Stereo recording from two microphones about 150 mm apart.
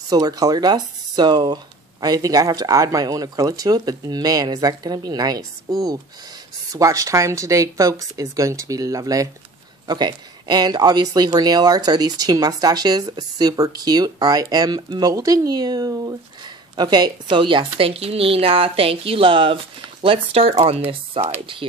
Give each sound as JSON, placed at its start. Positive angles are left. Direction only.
{"t": 0.1, "sound": "speech", "side_deg": -25}